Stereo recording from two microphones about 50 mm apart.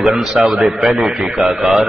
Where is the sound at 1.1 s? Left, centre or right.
Centre.